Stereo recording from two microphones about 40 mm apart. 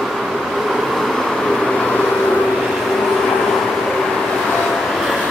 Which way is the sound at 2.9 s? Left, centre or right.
Centre.